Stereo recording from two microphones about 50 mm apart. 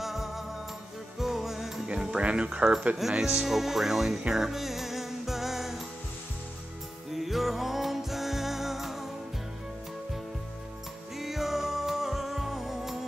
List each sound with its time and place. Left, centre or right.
0.0 s music: centre
1.9 s music: centre
3.0 s speech: centre
4.3 s music: centre
7.1 s music: centre
11.1 s music: centre